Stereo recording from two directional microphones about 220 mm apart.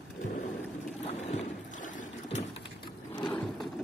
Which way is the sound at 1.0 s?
30° left (ahead or behind).